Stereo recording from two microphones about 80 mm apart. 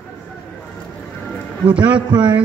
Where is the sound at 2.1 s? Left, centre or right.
Right.